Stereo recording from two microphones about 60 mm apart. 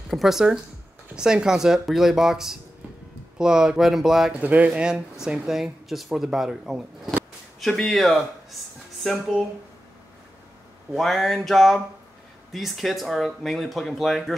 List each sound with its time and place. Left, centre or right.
0.1 s speech: centre
4.3 s speech: right
4.6 s speech: centre
7.6 s speech: centre
10.9 s speech: centre